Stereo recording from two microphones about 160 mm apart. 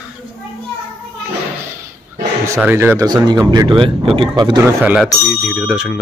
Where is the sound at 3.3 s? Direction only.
25° right (ahead or behind).